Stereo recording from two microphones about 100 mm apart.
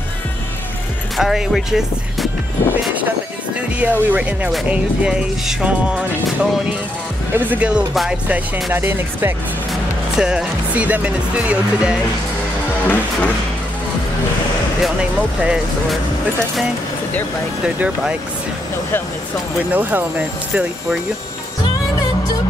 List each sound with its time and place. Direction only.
1.1 s speech: 5° right (ahead or behind)
3.8 s speech: 15° right (ahead or behind)
7.3 s speech: 15° right (ahead or behind)
7.9 s speech: centre (ahead or behind)
8.7 s speech: 25° right (ahead or behind)
10.1 s speech: 5° right (ahead or behind)
12.8 s music: 20° left (ahead or behind)
14.8 s speech: 5° right (ahead or behind)
17.7 s speech: 15° right (ahead or behind)
19.7 s speech: 15° right (ahead or behind)